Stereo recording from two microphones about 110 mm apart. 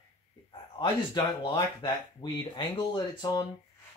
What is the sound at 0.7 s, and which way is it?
Speech, 45° left (ahead or behind).